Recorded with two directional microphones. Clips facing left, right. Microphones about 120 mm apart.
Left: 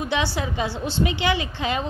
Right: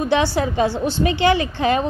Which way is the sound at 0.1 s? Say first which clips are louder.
Right 7 dB; 45° right (ahead or behind).